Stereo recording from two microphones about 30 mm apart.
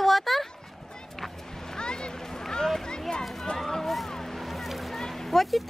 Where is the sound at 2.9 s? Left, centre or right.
Left.